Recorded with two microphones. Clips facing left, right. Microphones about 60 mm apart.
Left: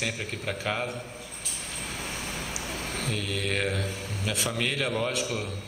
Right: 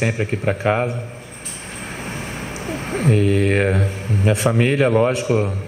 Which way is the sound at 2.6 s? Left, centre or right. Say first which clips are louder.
Right 15 dB; right.